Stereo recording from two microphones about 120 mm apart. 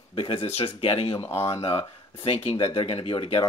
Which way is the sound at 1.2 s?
20° left (ahead or behind).